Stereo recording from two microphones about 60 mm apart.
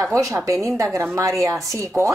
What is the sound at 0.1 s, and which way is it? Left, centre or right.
Speech, right.